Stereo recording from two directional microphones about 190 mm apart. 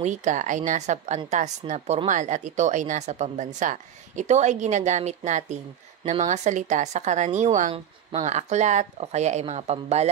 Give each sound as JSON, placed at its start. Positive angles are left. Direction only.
{"t": 0.0, "sound": "a woman's voice", "side_deg": -40}